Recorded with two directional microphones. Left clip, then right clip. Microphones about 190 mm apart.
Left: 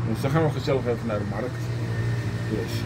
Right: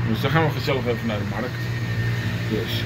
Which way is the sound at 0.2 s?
10° left (ahead or behind).